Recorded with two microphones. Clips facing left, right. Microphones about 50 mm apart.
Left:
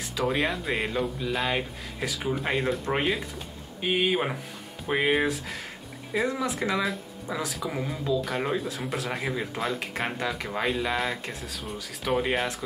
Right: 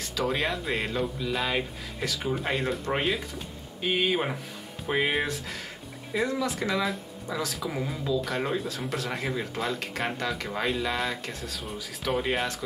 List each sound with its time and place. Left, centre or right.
0.0 s music: centre
0.3 s speech: centre
6.2 s speech: centre
6.7 s speech: centre
7.2 s speech: centre
7.6 s speech: centre
9.8 s speech: centre